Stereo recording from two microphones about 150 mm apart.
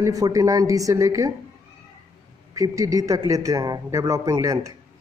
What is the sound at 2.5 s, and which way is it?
A man's voice, 20° right (ahead or behind).